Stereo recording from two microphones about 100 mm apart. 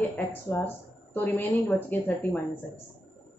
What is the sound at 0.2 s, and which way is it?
A woman's voice, 15° left (ahead or behind).